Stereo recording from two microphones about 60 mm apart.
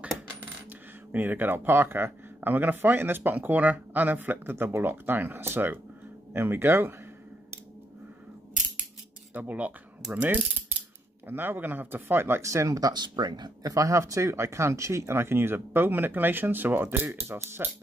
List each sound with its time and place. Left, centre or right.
0.7 s speech: right
9.3 s speech: right
12.4 s speech: right